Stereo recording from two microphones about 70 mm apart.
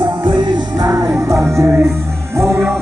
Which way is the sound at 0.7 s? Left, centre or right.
Right.